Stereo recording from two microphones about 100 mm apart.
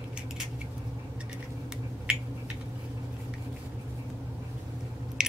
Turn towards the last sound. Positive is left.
turn(degrees=-5)  # may be behind; listen again after turning